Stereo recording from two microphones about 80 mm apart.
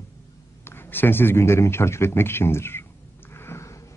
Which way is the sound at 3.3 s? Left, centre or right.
Left.